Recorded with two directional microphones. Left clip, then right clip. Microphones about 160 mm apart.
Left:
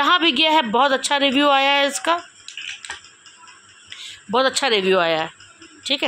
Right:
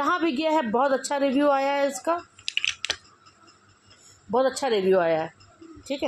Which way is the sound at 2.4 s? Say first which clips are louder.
Right 5 dB; 35° right (ahead or behind).